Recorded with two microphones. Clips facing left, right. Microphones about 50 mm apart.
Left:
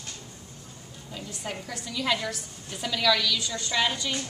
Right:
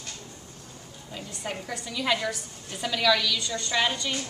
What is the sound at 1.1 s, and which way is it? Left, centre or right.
A woman's voice, centre.